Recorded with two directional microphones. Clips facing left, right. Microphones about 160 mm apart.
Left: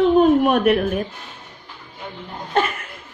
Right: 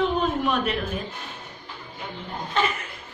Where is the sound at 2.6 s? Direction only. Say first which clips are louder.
Left 5 dB; 55° left (ahead or behind).